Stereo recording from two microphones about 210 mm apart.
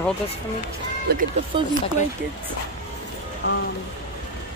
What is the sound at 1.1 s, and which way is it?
Speech, 50° right (ahead or behind).